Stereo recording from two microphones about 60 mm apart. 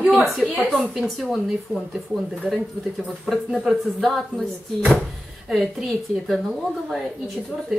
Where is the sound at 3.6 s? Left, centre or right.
Centre.